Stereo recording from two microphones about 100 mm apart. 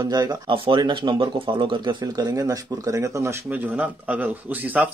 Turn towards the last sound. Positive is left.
turn(degrees=-15)  # may be behind; listen again after turning